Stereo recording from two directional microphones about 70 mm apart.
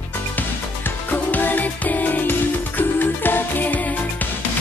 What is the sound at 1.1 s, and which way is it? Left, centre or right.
Music, left.